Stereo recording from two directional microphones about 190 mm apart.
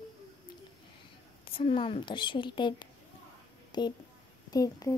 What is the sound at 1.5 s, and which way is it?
A woman's voice, 30° left (ahead or behind).